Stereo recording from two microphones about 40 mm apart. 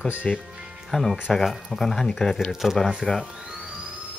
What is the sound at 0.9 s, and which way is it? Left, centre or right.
Speech, centre.